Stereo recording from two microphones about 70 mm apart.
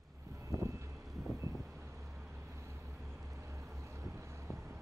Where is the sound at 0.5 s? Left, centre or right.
Right.